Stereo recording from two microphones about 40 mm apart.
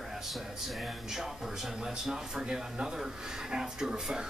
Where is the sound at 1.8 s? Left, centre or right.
Centre.